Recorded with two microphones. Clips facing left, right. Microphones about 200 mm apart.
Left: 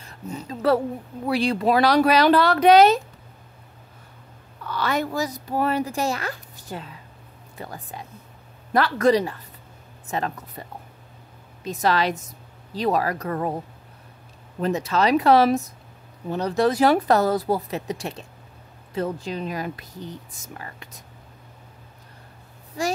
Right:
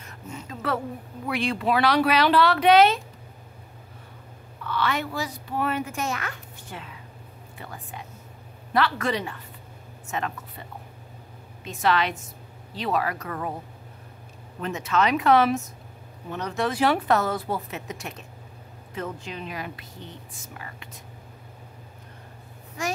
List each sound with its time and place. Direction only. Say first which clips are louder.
0.0 s a sound: left 5 dB; 35° left (ahead or behind)
1.2 s speech: left 5 dB; 35° left (ahead or behind)
4.6 s speech: left 2 dB; 40° left (ahead or behind)
11.6 s speech: left 2 dB; 40° left (ahead or behind)
14.6 s speech: left 3 dB; 35° left (ahead or behind)
22.8 s speech: left 4 dB; 35° left (ahead or behind)